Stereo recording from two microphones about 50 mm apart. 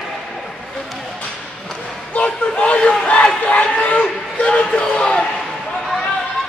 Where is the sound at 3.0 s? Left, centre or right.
Left.